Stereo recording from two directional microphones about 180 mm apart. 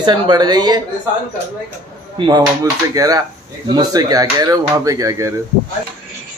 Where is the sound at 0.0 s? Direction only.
25° right (ahead or behind).